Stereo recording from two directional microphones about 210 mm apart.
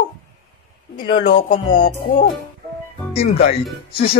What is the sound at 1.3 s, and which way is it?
Music, 35° left (ahead or behind).